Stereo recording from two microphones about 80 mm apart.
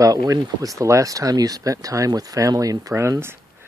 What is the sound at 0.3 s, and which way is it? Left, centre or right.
Speech, right.